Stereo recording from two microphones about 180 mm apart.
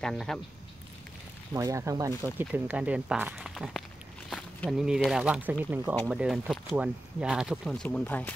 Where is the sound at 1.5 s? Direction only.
15° right (ahead or behind).